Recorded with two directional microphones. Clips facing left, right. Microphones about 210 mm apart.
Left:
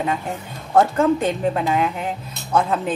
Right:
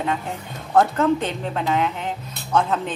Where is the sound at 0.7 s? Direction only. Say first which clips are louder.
Left 2 dB; 10° left (ahead or behind).